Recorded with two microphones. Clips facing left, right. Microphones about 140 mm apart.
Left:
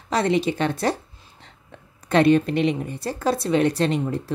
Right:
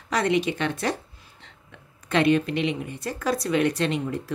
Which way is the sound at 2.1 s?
40° left (ahead or behind).